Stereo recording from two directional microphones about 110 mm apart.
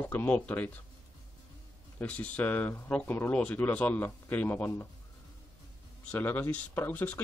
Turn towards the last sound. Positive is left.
turn(degrees=15)  # may be behind; listen again after turning